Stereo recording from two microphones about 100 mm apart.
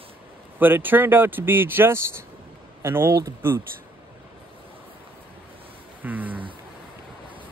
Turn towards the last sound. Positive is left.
turn(degrees=-15)  # may be behind; listen again after turning